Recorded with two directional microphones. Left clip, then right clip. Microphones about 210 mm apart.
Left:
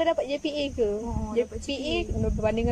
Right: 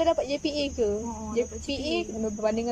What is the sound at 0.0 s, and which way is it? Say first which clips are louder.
Speech: even; centre (ahead or behind).